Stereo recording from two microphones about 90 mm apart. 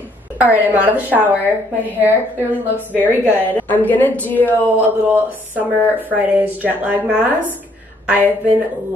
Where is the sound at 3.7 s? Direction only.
20° left (ahead or behind).